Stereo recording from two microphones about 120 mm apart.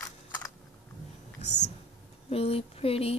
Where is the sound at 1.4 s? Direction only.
70° left (ahead or behind).